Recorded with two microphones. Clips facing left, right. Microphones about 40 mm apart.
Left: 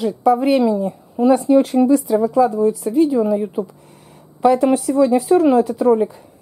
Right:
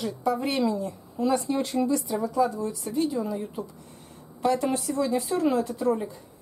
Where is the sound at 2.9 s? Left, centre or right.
Left.